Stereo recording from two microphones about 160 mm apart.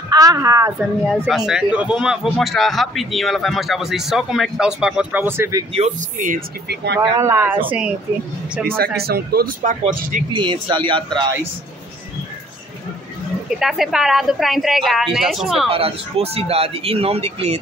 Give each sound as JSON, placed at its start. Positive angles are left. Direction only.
{"t": 0.1, "sound": "speech", "side_deg": -25}
{"t": 0.7, "sound": "speech", "side_deg": 0}
{"t": 5.7, "sound": "speech", "side_deg": -40}
{"t": 6.7, "sound": "speech", "side_deg": -90}
{"t": 7.0, "sound": "speech", "side_deg": -20}
{"t": 8.6, "sound": "speech", "side_deg": -70}
{"t": 10.3, "sound": "speech", "side_deg": -30}
{"t": 13.6, "sound": "speech", "side_deg": 0}
{"t": 15.7, "sound": "speech", "side_deg": -35}